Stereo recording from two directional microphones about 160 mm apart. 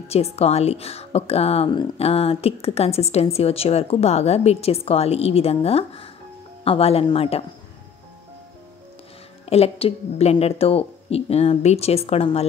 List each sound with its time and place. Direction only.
0.1 s a woman's voice: 40° left (ahead or behind)
9.5 s a woman's voice: 40° left (ahead or behind)